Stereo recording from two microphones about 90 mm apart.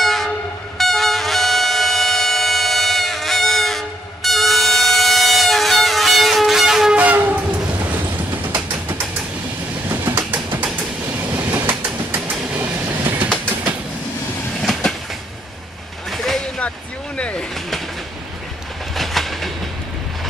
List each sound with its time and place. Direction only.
0.0 s train: centre (ahead or behind); by 7.9 s 15° right (ahead or behind)
8.5 s a sound: 15° right (ahead or behind)
9.8 s train: 25° right (ahead or behind)
14.6 s train: 5° left (ahead or behind)
16.1 s vehicle: 5° left (ahead or behind)
18.9 s train: centre (ahead or behind)